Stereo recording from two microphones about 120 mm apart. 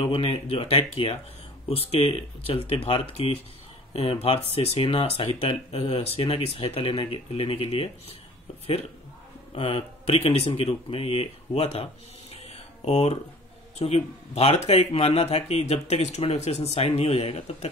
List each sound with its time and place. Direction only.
0.0 s speech: 50° left (ahead or behind)
9.6 s speech: 55° left (ahead or behind)